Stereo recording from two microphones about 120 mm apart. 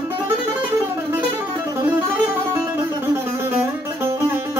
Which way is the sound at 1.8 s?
15° right (ahead or behind).